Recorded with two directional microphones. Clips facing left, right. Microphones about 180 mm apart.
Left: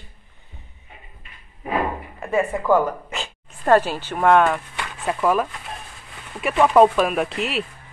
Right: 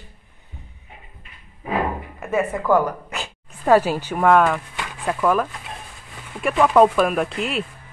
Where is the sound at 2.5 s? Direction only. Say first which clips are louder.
Even; 15° left (ahead or behind).